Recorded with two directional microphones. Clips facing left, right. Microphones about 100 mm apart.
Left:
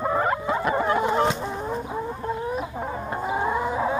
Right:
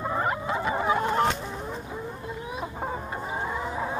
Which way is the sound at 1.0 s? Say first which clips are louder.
Left 2 dB; 10° left (ahead or behind).